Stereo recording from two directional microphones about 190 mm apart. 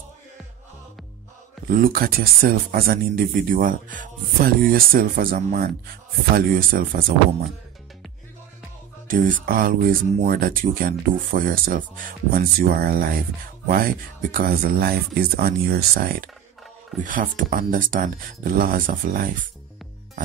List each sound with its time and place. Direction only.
1.7 s speech: 50° right (ahead or behind)
9.0 s speech: 45° right (ahead or behind)